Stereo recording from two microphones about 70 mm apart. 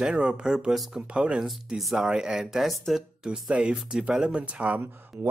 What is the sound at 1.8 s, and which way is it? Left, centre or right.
Speech, centre.